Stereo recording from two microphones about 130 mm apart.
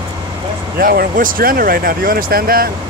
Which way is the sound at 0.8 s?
90° right.